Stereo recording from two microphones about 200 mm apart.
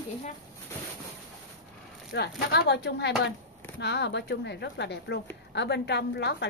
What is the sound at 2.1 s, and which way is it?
A woman's voice, 55° left (ahead or behind).